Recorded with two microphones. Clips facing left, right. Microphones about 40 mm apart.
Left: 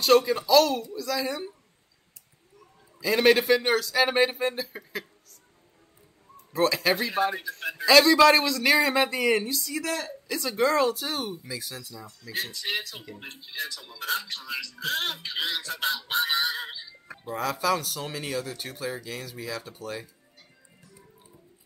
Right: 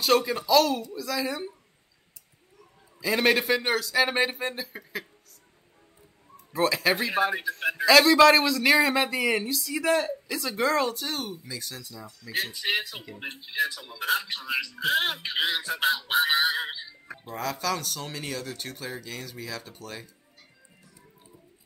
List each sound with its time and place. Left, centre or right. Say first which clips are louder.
0.0 s speech: left 3 dB; centre
3.0 s speech: left 2 dB; centre
6.5 s speech: even; centre
9.8 s speech: right 9 dB; centre
10.3 s speech: left 2 dB; centre
12.4 s music: right 3 dB; centre
13.3 s speech: right 7 dB; right
16.1 s music: right 2 dB; centre
17.3 s speech: left 3 dB; centre